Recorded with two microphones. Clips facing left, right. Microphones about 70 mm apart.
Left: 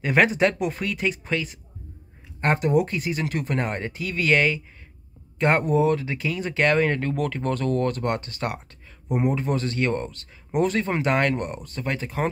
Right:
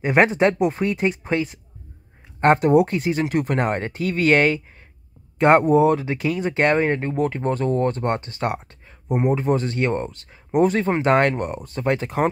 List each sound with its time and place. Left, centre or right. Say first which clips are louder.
0.0 s speech: right 3 dB; right
5.9 s speech: right 4 dB; right